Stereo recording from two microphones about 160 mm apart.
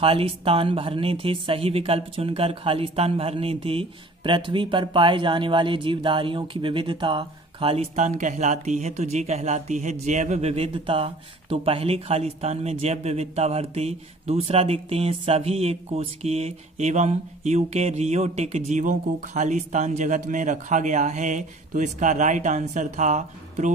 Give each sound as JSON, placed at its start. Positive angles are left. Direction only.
{"t": 0.0, "sound": "speech", "side_deg": -35}